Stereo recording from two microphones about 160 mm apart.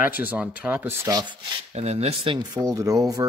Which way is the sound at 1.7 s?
40° right (ahead or behind).